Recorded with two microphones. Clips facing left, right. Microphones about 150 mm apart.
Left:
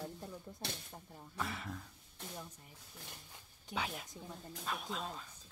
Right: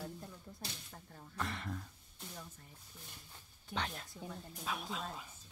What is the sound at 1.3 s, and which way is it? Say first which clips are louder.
Speech: right 1 dB; 5° left (ahead or behind).